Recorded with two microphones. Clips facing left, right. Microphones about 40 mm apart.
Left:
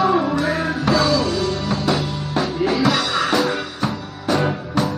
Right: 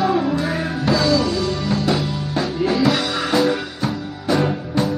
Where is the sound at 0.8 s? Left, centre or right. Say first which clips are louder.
Right 1 dB; left.